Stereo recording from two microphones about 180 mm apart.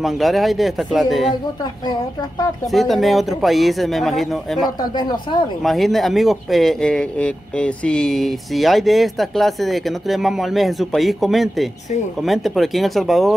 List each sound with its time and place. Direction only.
0.0 s speech: centre (ahead or behind)
1.3 s speech: 20° left (ahead or behind)
2.7 s speech: centre (ahead or behind)
4.9 s speech: 25° left (ahead or behind)
5.6 s speech: centre (ahead or behind)